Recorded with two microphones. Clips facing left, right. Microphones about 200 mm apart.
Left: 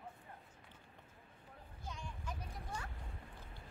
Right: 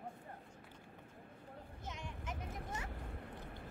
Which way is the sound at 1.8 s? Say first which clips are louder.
Even; 20° right (ahead or behind).